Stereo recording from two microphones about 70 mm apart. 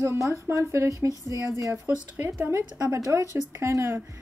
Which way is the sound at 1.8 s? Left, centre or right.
Right.